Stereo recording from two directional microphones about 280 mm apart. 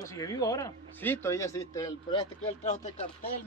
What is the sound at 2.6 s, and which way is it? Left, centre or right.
Speech, left.